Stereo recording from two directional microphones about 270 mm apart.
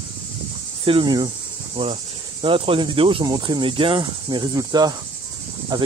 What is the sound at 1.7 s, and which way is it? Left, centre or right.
Insect, centre.